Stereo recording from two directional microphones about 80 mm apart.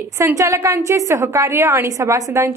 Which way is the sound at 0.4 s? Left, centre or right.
Right.